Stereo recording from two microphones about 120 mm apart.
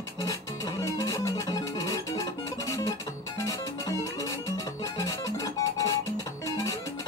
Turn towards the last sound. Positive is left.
turn(degrees=30)  # may be behind; listen again after turning